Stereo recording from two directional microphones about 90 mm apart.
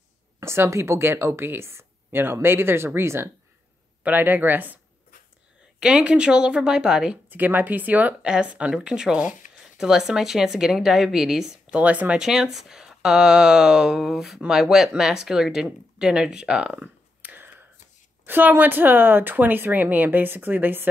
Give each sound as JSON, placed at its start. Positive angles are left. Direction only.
{"t": 0.4, "sound": "speech", "side_deg": -30}
{"t": 5.8, "sound": "speech", "side_deg": -10}
{"t": 7.2, "sound": "a woman's voice", "side_deg": -20}
{"t": 12.2, "sound": "a woman's voice", "side_deg": -5}
{"t": 16.8, "sound": "a sound", "side_deg": -20}
{"t": 18.2, "sound": "speech", "side_deg": -25}